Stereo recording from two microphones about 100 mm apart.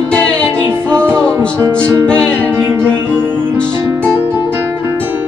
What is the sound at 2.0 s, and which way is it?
Music, 10° left (ahead or behind).